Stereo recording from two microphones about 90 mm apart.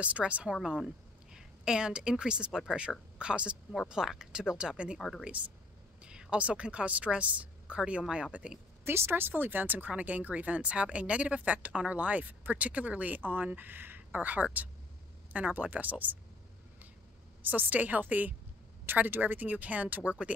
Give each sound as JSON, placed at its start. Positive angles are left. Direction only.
{"t": 0.0, "sound": "speech", "side_deg": -15}
{"t": 4.9, "sound": "speech", "side_deg": 0}
{"t": 6.0, "sound": "a woman's voice", "side_deg": -10}
{"t": 8.8, "sound": "speech", "side_deg": -25}
{"t": 17.4, "sound": "a woman's voice", "side_deg": -20}